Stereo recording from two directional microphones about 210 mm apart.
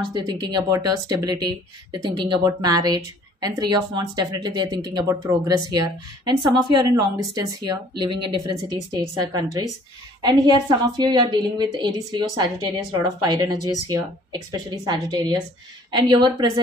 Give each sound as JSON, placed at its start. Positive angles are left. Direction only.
{"t": 0.1, "sound": "a woman's voice", "side_deg": -20}